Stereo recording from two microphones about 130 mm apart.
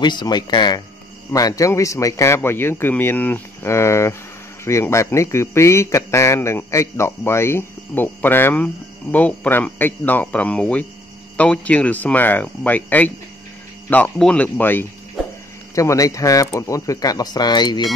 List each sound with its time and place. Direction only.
0.0 s a man's voice: 35° left (ahead or behind); by 14.9 s 15° left (ahead or behind)
15.2 s a sound: centre (ahead or behind)
15.7 s a man's voice: 25° left (ahead or behind)